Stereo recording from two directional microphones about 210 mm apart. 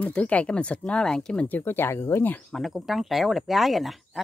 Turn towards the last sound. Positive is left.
turn(degrees=0)  # may be behind; listen again after turning